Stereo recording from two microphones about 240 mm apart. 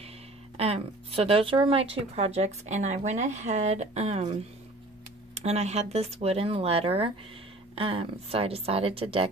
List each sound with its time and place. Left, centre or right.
0.6 s a woman's voice: right